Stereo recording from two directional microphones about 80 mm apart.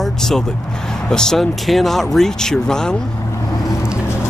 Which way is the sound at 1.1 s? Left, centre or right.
Centre.